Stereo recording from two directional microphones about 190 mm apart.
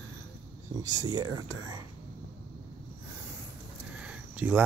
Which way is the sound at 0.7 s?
20° right (ahead or behind).